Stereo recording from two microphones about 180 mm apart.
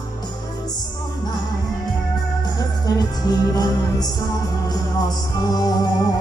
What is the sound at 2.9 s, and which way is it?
Music, 20° left (ahead or behind).